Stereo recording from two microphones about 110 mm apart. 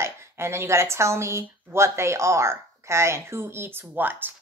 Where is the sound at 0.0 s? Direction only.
25° right (ahead or behind).